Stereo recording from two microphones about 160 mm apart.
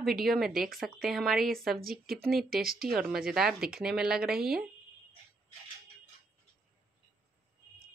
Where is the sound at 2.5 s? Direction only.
70° right (ahead or behind).